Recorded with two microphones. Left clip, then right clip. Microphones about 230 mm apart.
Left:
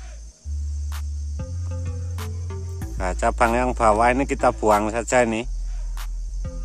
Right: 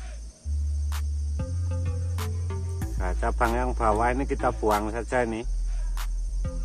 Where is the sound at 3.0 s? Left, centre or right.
Left.